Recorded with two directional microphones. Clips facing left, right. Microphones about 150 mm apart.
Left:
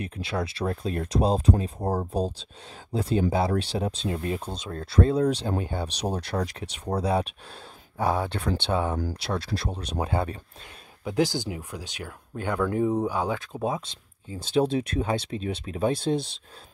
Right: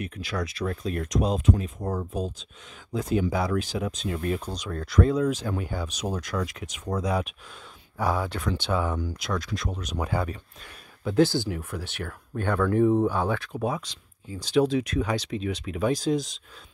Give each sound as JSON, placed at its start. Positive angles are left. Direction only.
{"t": 0.0, "sound": "speech", "side_deg": 30}
{"t": 11.1, "sound": "speech", "side_deg": 15}
{"t": 13.5, "sound": "speech", "side_deg": 25}